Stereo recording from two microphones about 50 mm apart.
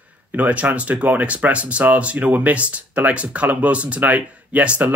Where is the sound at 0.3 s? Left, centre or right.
Right.